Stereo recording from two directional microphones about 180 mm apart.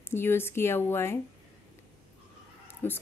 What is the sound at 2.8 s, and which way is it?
Speech, 10° left (ahead or behind).